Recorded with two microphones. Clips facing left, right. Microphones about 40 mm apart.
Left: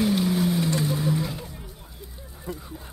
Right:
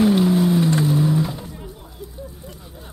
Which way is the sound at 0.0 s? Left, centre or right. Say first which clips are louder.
Right 6 dB; right.